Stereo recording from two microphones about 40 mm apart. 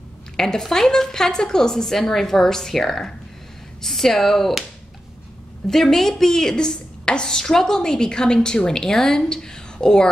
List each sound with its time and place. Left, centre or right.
0.4 s speech: centre
5.7 s speech: centre